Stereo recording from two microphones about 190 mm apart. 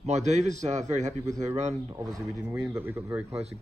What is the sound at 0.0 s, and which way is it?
A man's voice, 35° right (ahead or behind).